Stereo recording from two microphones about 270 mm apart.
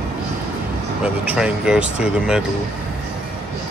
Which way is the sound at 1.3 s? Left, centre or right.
Centre.